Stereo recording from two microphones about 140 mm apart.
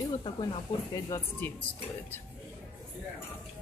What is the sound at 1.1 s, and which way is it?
Speech, 15° left (ahead or behind).